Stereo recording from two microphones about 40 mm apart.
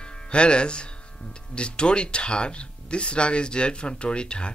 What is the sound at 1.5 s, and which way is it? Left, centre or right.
Speech, left.